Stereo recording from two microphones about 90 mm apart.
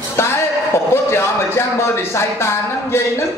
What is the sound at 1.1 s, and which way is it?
Speech, 30° left (ahead or behind).